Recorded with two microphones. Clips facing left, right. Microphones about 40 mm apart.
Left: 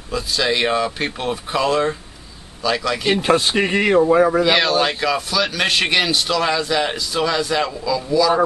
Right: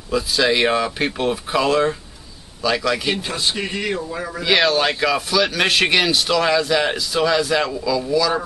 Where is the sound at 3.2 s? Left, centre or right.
Left.